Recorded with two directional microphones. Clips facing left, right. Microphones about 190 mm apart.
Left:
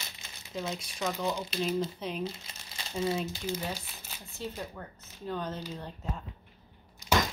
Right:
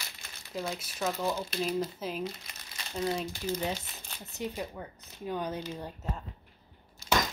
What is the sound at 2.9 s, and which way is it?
Speech, 5° left (ahead or behind).